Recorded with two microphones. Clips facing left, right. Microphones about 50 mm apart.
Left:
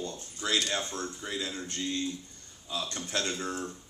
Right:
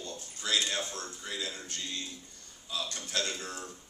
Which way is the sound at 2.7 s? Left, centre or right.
Left.